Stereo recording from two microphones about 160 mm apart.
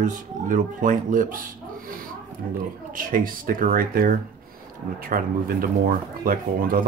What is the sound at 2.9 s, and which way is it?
Speech, 60° right (ahead or behind).